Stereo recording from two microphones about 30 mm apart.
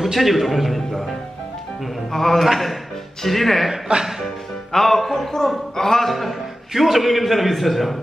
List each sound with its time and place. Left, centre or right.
0.0 s a man's voice: centre
2.3 s a man's voice: centre
3.9 s speech: right
4.7 s speech: centre
6.7 s a man's voice: centre